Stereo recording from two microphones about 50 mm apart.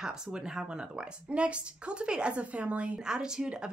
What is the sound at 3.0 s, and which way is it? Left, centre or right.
Speech, centre.